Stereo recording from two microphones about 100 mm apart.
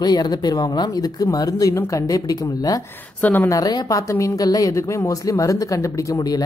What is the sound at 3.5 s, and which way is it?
A man's voice, 40° left (ahead or behind).